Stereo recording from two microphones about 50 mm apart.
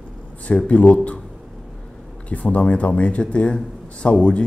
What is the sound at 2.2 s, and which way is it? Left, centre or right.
Speech, left.